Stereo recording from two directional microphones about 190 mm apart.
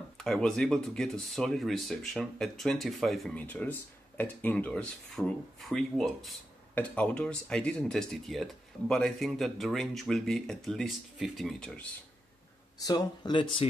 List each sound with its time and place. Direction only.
0.2 s speech: centre (ahead or behind)
12.7 s speech: 20° left (ahead or behind)